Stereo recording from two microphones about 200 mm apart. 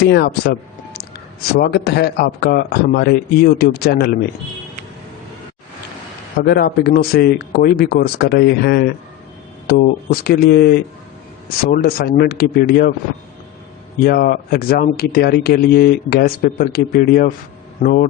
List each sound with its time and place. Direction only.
0.1 s speech: 55° left (ahead or behind)
1.5 s speech: 50° left (ahead or behind)
6.4 s speech: 50° left (ahead or behind)
14.0 s speech: 50° left (ahead or behind)